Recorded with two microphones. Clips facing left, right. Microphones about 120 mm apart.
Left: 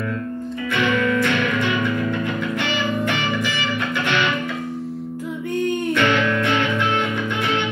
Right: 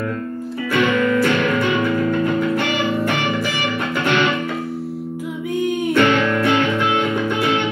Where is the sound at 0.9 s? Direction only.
40° right (ahead or behind).